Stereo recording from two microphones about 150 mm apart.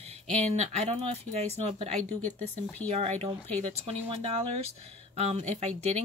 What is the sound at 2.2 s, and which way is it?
Speech, 10° left (ahead or behind).